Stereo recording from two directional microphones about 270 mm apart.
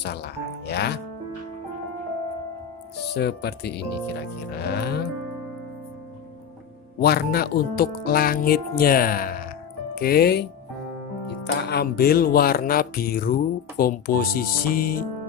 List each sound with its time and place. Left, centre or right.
0.0 s speech: left
3.2 s speech: left
7.0 s speech: left
11.7 s speech: left